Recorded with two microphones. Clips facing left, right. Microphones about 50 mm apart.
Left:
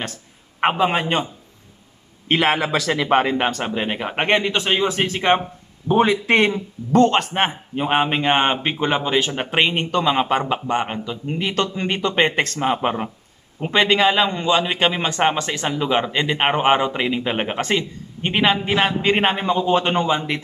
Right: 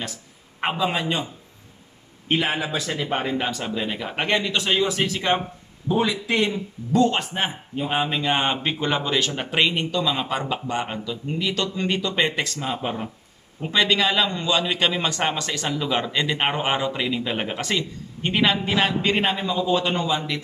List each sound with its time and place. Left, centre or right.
0.0 s a man's voice: left
2.2 s a man's voice: left
13.6 s a man's voice: left
19.1 s a man's voice: left